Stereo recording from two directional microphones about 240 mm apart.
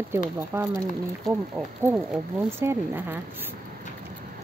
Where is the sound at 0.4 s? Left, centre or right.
Centre.